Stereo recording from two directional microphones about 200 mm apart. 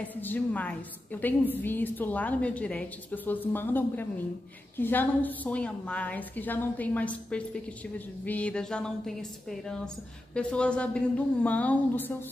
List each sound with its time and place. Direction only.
0.0 s a woman's voice: 10° left (ahead or behind)